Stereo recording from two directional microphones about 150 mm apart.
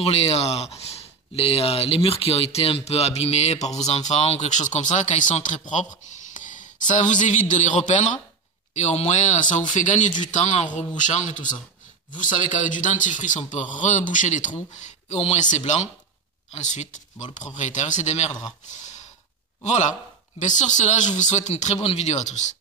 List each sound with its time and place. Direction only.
0.0 s a man's voice: 45° left (ahead or behind)
19.6 s speech: 50° left (ahead or behind)